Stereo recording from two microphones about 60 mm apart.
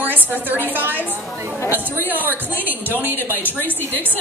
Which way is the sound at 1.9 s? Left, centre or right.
Right.